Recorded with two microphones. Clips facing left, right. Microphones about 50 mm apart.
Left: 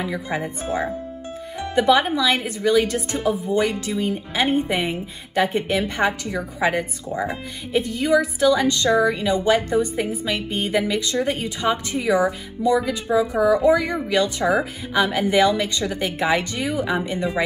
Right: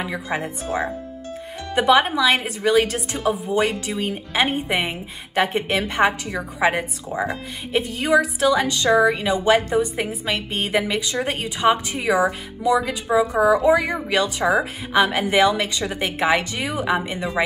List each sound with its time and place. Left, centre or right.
0.0 s a woman's voice: right
1.8 s a woman's voice: right